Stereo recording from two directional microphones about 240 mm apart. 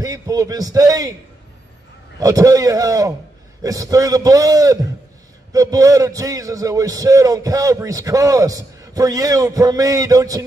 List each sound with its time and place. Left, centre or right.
0.0 s a man's voice: centre
2.1 s a man's voice: centre